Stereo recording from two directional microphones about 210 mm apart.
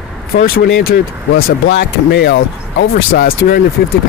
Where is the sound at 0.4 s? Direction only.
45° left (ahead or behind).